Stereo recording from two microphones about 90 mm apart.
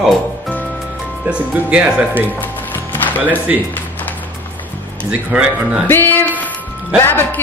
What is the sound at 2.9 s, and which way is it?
Music, 20° left (ahead or behind).